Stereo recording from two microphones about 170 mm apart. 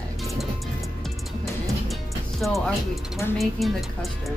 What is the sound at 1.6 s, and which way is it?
Music, centre (ahead or behind).